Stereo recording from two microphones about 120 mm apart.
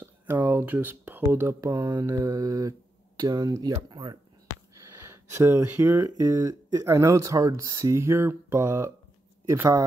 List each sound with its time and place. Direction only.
0.0 s speech: 15° right (ahead or behind); by 4.2 s 40° right (ahead or behind)
4.8 s speech: 20° right (ahead or behind)